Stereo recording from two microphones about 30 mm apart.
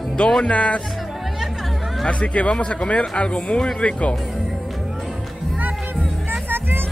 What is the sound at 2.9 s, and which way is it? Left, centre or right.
Speech, left.